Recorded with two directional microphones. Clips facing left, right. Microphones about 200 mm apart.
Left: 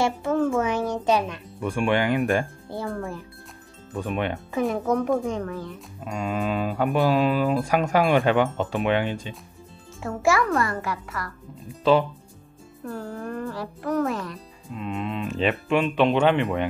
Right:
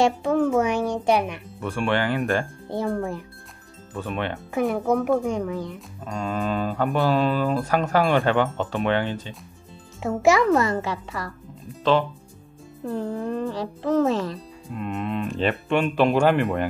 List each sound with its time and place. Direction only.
0.0 s music: 15° right (ahead or behind)
0.6 s speech: 10° right (ahead or behind)
1.6 s speech: 10° left (ahead or behind)
2.7 s speech: 20° right (ahead or behind)
3.9 s speech: 10° left (ahead or behind)
4.6 s speech: 5° right (ahead or behind)
6.0 s speech: 10° left (ahead or behind)
10.0 s speech: 20° right (ahead or behind)
12.8 s speech: 20° right (ahead or behind)
14.7 s speech: centre (ahead or behind)